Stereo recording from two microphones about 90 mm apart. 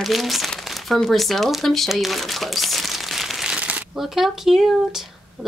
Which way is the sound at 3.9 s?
5° right (ahead or behind).